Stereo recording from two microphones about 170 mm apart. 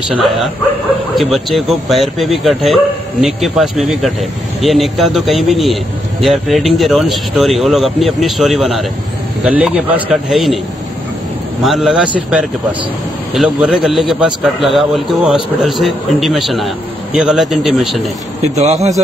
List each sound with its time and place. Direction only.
1.1 s a man's voice: centre (ahead or behind)
11.6 s a man's voice: centre (ahead or behind)
18.4 s a man's voice: 40° right (ahead or behind)